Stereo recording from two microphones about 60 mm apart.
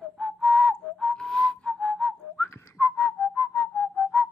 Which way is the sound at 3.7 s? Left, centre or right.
Left.